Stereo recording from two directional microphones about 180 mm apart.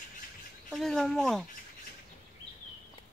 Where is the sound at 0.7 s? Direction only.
Centre (ahead or behind).